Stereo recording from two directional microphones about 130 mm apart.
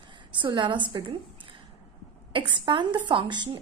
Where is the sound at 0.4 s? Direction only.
40° right (ahead or behind).